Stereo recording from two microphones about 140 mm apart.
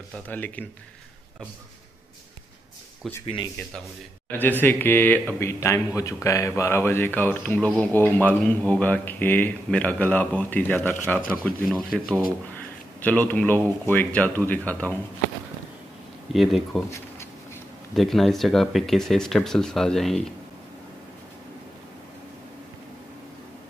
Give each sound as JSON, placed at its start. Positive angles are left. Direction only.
{"t": 0.3, "sound": "speech", "side_deg": 10}
{"t": 4.3, "sound": "speech", "side_deg": 15}
{"t": 13.3, "sound": "speech", "side_deg": 15}
{"t": 16.3, "sound": "speech", "side_deg": 0}
{"t": 17.9, "sound": "speech", "side_deg": 0}